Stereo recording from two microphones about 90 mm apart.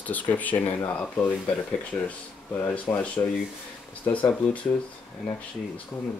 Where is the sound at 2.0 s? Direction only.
20° left (ahead or behind).